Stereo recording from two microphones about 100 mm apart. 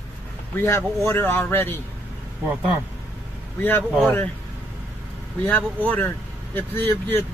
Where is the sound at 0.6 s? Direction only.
25° left (ahead or behind).